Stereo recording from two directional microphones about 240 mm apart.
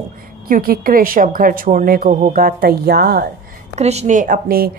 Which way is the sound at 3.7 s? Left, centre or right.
Right.